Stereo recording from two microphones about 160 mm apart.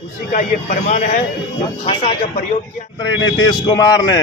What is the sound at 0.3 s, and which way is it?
Speech, 55° left (ahead or behind).